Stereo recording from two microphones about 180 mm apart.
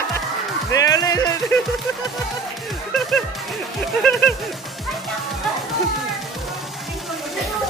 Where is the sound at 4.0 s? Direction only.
5° left (ahead or behind).